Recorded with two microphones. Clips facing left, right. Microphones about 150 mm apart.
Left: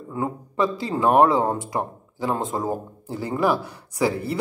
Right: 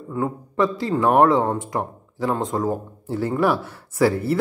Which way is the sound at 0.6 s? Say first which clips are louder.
Right 2 dB; centre (ahead or behind).